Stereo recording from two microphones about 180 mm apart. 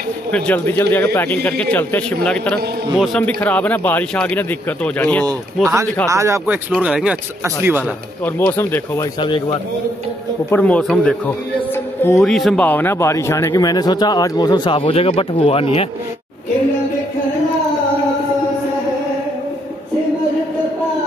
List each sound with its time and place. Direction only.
0.3 s a man's voice: 10° left (ahead or behind)
6.0 s speech: 15° right (ahead or behind)
8.4 s a man's voice: 10° left (ahead or behind)
9.2 s speech: 25° left (ahead or behind)
10.5 s a man's voice: 5° left (ahead or behind)
12.2 s speech: centre (ahead or behind); by 15.6 s 30° left (ahead or behind)